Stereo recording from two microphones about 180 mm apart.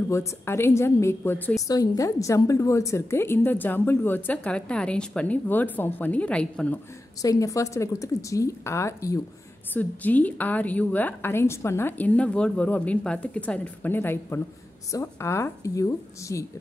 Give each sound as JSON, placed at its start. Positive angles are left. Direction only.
{"t": 0.1, "sound": "a woman's voice", "side_deg": 15}
{"t": 7.2, "sound": "a woman's voice", "side_deg": 20}